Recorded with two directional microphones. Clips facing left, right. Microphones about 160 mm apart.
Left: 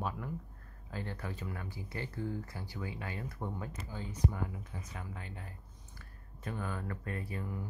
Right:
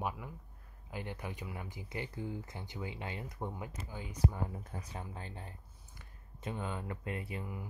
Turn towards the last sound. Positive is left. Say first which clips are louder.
# even
turn(degrees=-20)  # may be behind; listen again after turning